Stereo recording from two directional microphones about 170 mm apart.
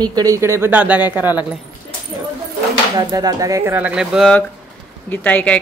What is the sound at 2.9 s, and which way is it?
Speech, 20° right (ahead or behind).